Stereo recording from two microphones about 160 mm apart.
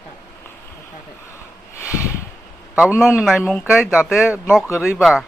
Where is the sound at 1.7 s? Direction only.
20° left (ahead or behind).